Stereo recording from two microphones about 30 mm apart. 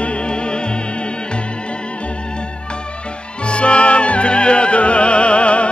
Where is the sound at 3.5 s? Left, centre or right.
Left.